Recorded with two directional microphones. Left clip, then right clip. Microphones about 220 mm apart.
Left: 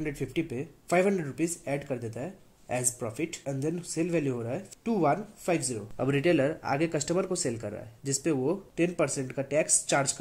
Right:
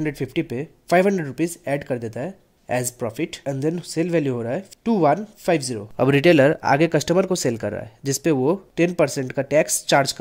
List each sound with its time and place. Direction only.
0.0 s speech: 40° right (ahead or behind)